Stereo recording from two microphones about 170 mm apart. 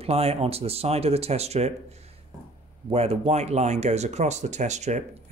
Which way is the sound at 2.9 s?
35° right (ahead or behind).